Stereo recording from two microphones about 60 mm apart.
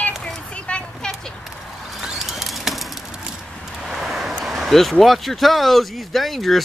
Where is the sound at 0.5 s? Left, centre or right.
Centre.